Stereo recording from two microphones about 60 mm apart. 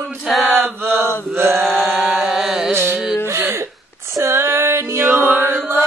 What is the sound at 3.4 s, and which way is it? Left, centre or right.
Hiccup, right.